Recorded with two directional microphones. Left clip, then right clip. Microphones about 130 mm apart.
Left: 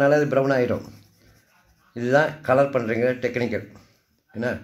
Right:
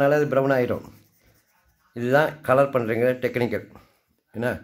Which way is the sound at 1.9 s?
30° right (ahead or behind).